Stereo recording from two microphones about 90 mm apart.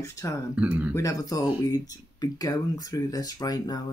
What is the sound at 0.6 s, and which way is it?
Speech, 15° right (ahead or behind).